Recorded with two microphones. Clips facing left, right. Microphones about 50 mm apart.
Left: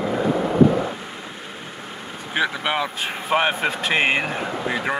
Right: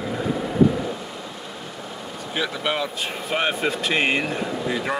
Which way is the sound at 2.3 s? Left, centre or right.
Centre.